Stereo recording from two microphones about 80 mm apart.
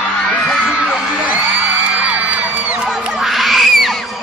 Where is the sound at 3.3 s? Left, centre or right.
Centre.